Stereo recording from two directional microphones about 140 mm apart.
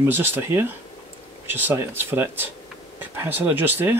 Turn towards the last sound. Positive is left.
turn(degrees=-15)  # may be behind; listen again after turning